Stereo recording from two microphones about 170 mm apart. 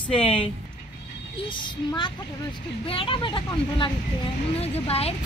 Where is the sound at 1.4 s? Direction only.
30° left (ahead or behind).